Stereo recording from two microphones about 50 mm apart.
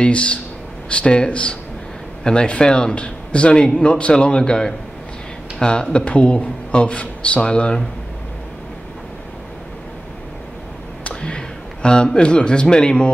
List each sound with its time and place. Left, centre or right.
0.0 s a man's voice: left
11.1 s speech: centre